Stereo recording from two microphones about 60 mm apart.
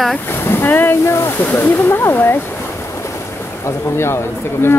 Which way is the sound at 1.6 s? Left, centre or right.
Left.